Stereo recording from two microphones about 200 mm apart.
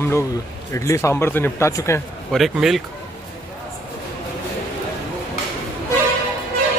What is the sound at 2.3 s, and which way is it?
Speech, centre (ahead or behind).